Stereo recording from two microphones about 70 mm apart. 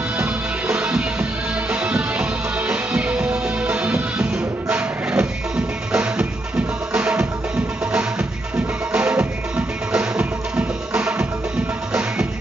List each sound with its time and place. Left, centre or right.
0.2 s music: centre